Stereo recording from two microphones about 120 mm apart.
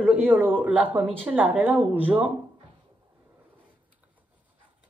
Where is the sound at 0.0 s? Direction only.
10° right (ahead or behind).